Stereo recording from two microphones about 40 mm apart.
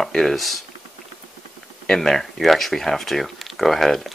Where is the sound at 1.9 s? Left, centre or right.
Centre.